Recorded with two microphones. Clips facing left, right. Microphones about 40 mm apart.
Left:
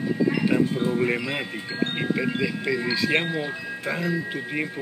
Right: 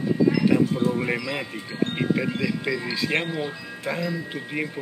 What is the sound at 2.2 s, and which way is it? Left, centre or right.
Speech, centre.